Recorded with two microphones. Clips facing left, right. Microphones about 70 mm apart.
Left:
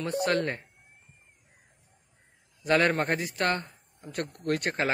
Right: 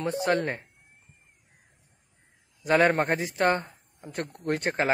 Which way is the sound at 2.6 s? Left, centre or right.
Centre.